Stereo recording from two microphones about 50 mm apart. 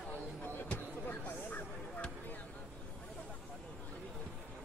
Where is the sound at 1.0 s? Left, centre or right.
Left.